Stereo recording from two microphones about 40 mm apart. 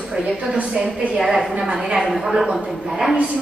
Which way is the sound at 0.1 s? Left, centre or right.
Right.